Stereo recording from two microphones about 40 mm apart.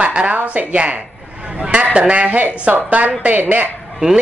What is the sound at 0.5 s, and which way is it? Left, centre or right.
A woman's voice, right.